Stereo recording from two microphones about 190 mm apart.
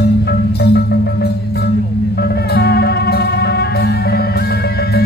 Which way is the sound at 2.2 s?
55° left (ahead or behind).